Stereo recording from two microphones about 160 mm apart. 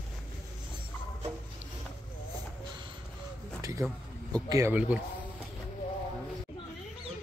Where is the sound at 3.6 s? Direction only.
20° right (ahead or behind).